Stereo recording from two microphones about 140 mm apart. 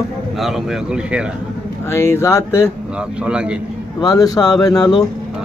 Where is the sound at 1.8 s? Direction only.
20° left (ahead or behind).